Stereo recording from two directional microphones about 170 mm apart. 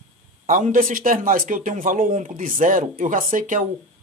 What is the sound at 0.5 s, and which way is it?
Speech, 50° right (ahead or behind).